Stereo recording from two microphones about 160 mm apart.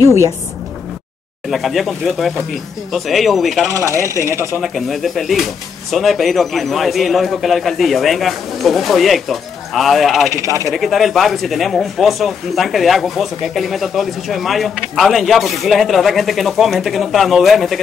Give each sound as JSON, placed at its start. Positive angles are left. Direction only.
{"t": 0.0, "sound": "speech", "side_deg": -15}
{"t": 1.5, "sound": "speech", "side_deg": 0}
{"t": 4.3, "sound": "speech", "side_deg": -15}
{"t": 4.6, "sound": "speech", "side_deg": 0}
{"t": 10.3, "sound": "speech", "side_deg": 20}
{"t": 10.7, "sound": "speech", "side_deg": 0}